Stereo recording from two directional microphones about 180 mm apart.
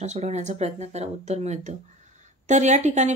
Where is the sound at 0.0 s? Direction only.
40° right (ahead or behind).